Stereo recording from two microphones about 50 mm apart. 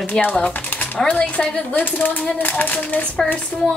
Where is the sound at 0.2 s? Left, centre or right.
Left.